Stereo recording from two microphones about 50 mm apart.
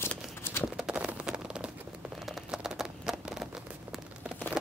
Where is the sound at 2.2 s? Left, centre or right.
Centre.